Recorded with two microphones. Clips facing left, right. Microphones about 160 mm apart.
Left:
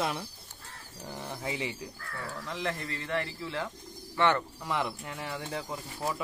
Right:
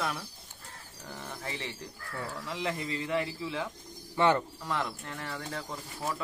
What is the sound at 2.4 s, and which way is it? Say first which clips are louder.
Speech: even; 5° right (ahead or behind).